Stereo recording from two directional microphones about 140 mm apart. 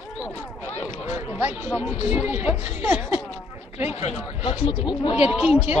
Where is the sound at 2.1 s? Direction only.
10° right (ahead or behind).